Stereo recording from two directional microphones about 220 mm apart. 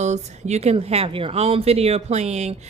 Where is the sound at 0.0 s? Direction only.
30° right (ahead or behind).